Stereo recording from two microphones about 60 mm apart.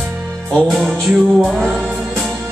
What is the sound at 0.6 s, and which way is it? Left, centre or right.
Music, centre.